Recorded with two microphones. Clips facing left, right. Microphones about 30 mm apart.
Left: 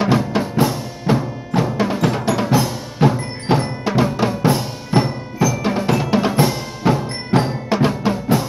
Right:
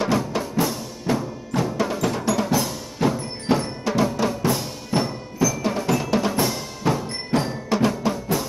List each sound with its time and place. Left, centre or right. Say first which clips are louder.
0.0 s music: left 5 dB; left